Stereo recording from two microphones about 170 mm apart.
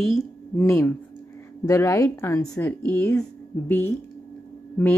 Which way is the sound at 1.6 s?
15° left (ahead or behind).